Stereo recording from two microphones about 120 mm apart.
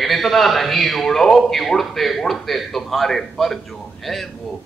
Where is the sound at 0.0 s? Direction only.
Centre (ahead or behind).